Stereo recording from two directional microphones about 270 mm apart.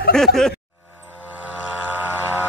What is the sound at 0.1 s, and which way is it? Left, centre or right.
Speech, centre.